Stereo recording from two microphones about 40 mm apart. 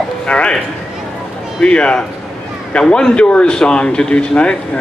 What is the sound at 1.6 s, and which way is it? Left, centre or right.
A man's voice, left.